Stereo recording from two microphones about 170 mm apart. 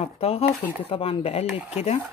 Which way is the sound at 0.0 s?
35° left (ahead or behind).